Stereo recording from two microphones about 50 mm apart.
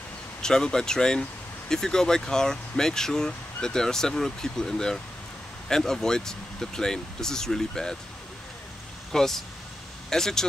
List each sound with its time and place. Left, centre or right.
0.4 s speech: centre
9.1 s speech: centre